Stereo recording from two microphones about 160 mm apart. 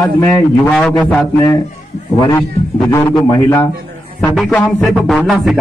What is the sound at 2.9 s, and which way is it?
Speech, 20° left (ahead or behind).